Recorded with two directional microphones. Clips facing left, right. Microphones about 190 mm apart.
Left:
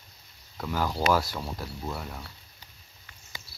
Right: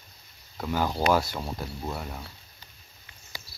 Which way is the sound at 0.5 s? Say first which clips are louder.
Right 2 dB; 20° right (ahead or behind).